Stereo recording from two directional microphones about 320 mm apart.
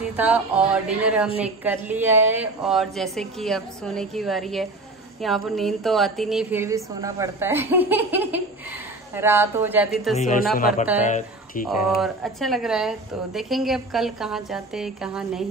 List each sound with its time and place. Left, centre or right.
0.1 s a woman's voice: centre
10.1 s speech: left
12.0 s a woman's voice: centre